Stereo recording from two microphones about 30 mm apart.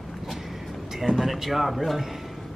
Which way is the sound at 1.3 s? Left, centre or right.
Centre.